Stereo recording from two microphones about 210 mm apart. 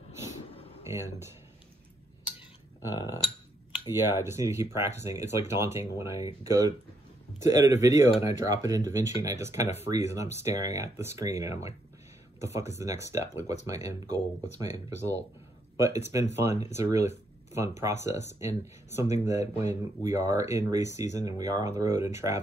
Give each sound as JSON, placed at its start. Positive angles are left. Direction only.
{"t": 0.8, "sound": "speech", "side_deg": -10}
{"t": 4.1, "sound": "speech", "side_deg": -10}